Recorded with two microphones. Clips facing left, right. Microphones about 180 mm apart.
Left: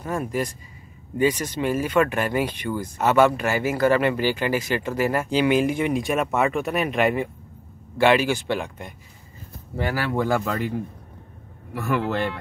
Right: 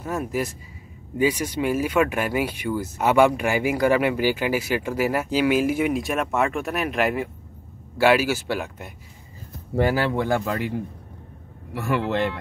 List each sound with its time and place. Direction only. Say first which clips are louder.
0.0 s speech: even; 10° right (ahead or behind)
10.2 s speech: even; 15° right (ahead or behind)
11.7 s a man's voice: even; 20° right (ahead or behind)